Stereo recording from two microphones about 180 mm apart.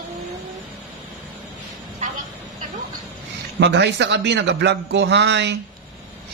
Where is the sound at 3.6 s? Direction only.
70° right (ahead or behind).